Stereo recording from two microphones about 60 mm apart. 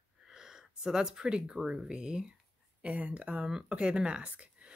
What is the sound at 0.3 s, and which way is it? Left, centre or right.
Speech, centre.